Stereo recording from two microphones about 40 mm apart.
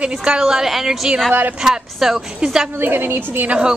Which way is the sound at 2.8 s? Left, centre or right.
Right.